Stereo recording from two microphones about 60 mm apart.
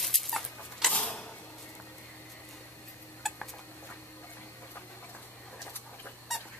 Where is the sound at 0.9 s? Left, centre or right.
Centre.